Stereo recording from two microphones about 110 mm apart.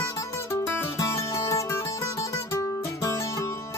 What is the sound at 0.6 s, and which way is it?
Music, 25° left (ahead or behind).